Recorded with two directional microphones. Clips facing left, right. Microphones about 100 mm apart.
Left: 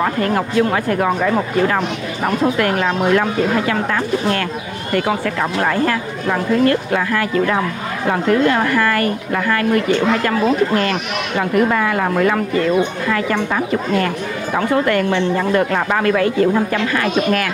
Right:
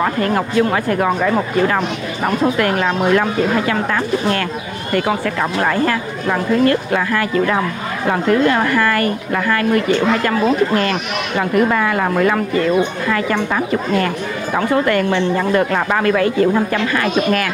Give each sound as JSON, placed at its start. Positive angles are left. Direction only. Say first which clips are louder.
{"t": 0.0, "sound": "speech", "louder": "right 1 dB", "side_deg": -30}